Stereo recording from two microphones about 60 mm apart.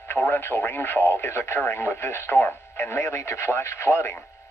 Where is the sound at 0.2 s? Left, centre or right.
Left.